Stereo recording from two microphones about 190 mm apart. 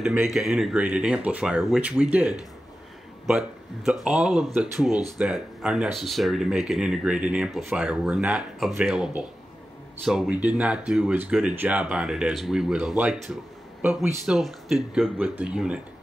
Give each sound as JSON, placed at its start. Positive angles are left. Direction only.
{"t": 0.0, "sound": "speech", "side_deg": -5}